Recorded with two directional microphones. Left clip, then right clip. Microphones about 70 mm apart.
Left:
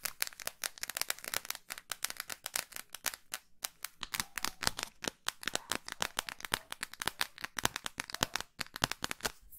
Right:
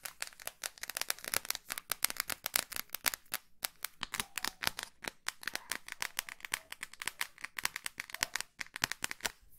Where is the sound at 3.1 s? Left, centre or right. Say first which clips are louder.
Right 3 dB; right.